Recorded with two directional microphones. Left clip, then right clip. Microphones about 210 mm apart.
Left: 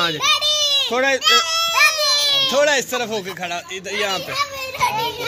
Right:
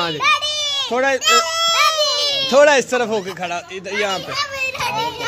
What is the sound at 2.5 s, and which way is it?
Speech, 35° right (ahead or behind).